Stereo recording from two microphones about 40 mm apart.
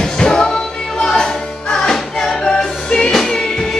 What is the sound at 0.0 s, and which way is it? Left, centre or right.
Music, centre.